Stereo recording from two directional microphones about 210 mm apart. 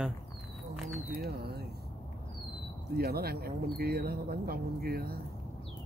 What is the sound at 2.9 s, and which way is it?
Speech, 50° right (ahead or behind).